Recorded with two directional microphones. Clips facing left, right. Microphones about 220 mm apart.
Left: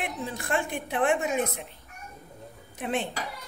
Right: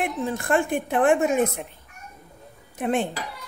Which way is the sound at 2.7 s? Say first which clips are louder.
Right 6 dB; 50° right (ahead or behind).